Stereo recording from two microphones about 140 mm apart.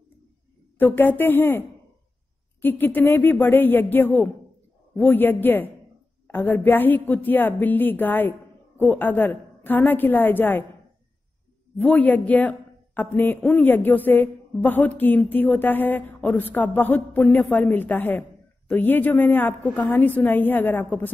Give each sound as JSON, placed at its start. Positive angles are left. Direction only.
{"t": 0.7, "sound": "a man's voice", "side_deg": 15}
{"t": 2.6, "sound": "a man's voice", "side_deg": 15}
{"t": 11.8, "sound": "a man's voice", "side_deg": 15}